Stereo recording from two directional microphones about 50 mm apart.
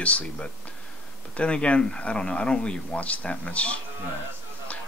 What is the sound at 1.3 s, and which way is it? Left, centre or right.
Speech, left.